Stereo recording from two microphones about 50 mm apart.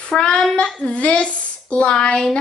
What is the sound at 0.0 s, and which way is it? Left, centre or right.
A child's voice, centre.